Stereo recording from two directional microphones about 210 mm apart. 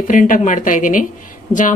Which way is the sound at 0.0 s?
40° left (ahead or behind).